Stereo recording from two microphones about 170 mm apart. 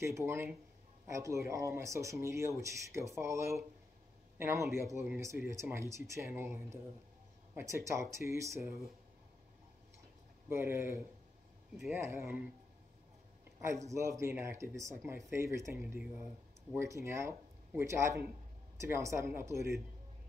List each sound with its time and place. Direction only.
0.0 s speech: 15° right (ahead or behind)
10.5 s speech: 15° right (ahead or behind)
13.8 s speech: 15° right (ahead or behind)